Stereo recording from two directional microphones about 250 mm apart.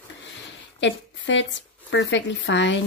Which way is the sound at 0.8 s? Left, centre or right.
Left.